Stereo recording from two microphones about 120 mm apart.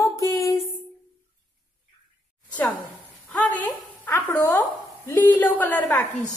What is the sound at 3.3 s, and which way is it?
A woman's voice, 10° left (ahead or behind).